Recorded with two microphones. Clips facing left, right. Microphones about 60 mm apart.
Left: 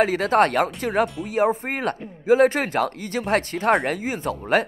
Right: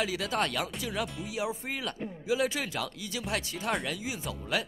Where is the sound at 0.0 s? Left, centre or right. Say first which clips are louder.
Left 12 dB; left.